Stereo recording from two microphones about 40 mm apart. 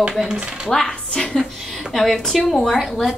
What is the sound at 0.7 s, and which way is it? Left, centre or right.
A woman's voice, centre.